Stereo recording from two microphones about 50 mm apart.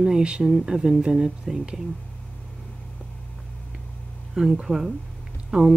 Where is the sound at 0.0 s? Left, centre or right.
Right.